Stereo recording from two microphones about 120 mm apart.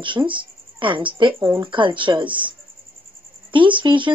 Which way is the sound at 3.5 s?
45° right (ahead or behind).